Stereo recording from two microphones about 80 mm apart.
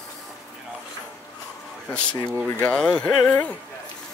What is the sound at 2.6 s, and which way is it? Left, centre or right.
Speech, centre.